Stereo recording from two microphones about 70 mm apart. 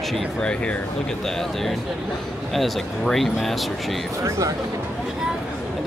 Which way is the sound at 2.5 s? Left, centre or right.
Centre.